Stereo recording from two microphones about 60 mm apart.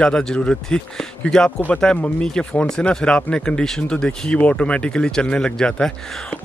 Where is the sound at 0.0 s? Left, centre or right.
Centre.